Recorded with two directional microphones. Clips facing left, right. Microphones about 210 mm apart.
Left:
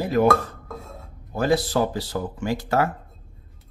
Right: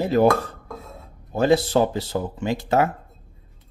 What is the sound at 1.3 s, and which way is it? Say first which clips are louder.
Speech: right 3 dB; 25° right (ahead or behind).